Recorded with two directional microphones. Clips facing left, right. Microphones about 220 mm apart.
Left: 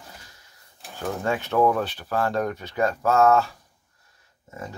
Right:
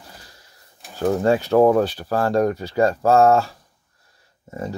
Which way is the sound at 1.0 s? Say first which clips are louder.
Right 8 dB; 35° right (ahead or behind).